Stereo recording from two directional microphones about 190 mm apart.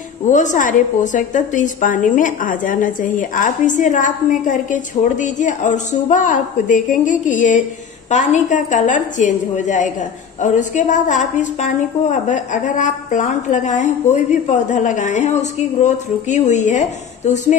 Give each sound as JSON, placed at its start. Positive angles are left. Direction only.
{"t": 0.2, "sound": "a woman's voice", "side_deg": 40}